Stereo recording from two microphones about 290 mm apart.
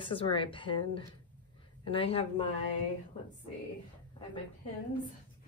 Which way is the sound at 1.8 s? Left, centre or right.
Centre.